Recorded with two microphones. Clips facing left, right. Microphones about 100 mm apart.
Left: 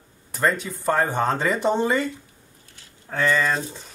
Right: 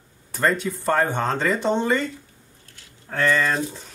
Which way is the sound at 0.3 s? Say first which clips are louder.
Right 1 dB; centre (ahead or behind).